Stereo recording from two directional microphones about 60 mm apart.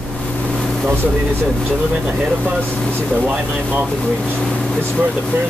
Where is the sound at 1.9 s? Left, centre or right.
Right.